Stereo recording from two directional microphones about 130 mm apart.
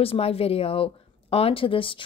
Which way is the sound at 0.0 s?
45° left (ahead or behind).